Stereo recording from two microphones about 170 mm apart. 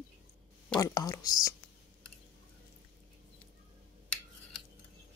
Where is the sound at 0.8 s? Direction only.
20° left (ahead or behind).